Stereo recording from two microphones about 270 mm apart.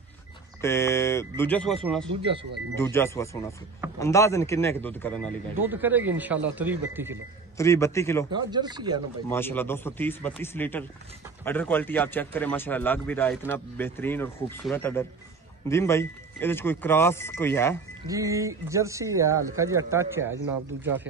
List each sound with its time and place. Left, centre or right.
0.6 s speech: centre
5.6 s speech: centre
7.5 s speech: centre
8.3 s speech: centre
9.3 s speech: centre
18.0 s speech: centre